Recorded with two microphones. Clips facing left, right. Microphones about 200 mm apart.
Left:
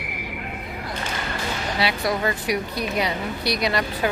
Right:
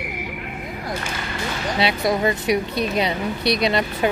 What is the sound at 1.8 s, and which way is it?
Speech, 20° right (ahead or behind).